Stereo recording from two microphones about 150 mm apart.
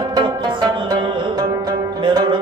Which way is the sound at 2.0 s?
30° right (ahead or behind).